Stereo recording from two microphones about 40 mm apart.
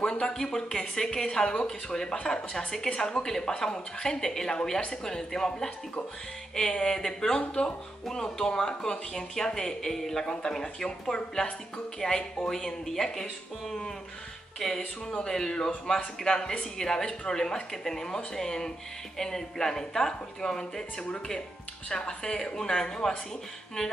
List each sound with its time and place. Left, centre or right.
0.0 s speech: centre
15.2 s speech: centre
17.4 s speech: centre
21.8 s speech: left